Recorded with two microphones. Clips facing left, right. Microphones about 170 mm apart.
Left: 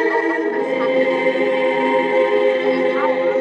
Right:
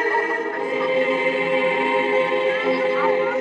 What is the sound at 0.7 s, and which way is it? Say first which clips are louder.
Choir: left 2 dB; 35° left (ahead or behind).